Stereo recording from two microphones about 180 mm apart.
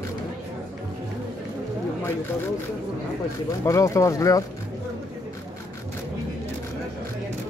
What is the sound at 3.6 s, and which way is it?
Speech, 15° left (ahead or behind).